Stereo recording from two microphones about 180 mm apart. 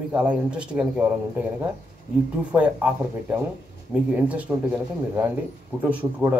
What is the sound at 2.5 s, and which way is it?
Speech, 10° right (ahead or behind).